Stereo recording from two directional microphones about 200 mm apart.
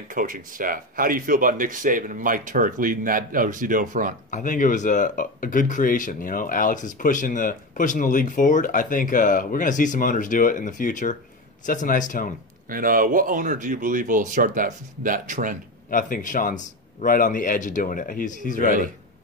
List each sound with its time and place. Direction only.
0.1 s speech: 40° right (ahead or behind)
4.3 s speech: 40° left (ahead or behind)
12.6 s speech: 45° right (ahead or behind)
15.9 s speech: 40° left (ahead or behind)